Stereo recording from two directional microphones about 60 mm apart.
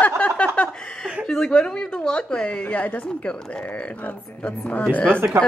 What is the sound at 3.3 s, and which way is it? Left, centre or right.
Speech, centre.